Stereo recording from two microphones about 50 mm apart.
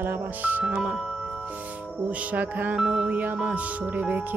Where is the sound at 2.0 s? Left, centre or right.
Right.